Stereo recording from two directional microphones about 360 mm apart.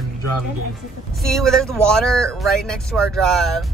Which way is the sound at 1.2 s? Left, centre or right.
Centre.